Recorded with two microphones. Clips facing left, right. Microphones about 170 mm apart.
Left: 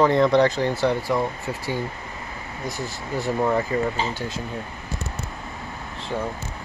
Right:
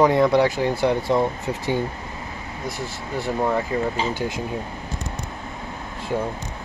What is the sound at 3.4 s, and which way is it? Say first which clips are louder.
Speech: even; centre (ahead or behind).